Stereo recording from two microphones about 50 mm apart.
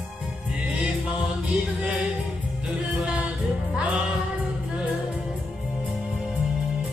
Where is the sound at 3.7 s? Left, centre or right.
Right.